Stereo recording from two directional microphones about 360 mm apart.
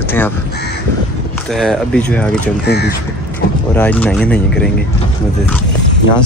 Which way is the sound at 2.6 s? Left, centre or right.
Left.